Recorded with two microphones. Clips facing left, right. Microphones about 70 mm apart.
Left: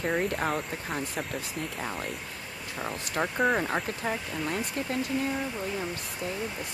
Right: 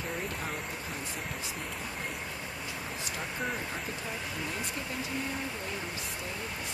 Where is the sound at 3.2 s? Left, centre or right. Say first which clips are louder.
Left 11 dB; left.